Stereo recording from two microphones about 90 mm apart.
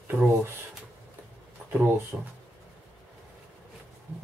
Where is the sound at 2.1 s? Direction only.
15° right (ahead or behind).